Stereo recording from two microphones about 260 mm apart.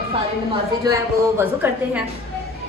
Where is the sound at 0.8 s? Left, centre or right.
Centre.